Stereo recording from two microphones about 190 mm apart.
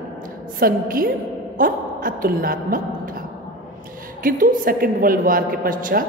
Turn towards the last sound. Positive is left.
turn(degrees=-45)  # may be behind; listen again after turning